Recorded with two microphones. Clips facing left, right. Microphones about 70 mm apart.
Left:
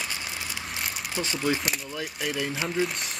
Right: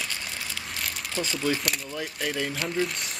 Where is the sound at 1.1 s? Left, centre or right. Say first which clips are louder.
Even; centre.